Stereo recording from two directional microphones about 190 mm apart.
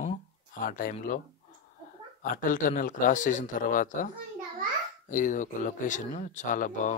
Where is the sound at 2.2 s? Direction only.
45° left (ahead or behind).